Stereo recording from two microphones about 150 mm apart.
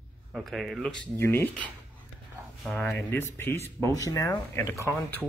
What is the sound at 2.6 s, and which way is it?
Speech, centre (ahead or behind).